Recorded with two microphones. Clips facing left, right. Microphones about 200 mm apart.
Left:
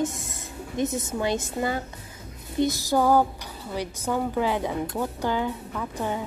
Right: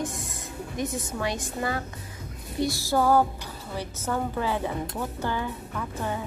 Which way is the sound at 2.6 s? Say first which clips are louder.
Left 2 dB; 20° left (ahead or behind).